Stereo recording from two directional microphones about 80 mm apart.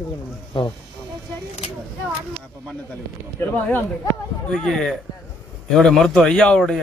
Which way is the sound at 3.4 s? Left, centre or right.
Left.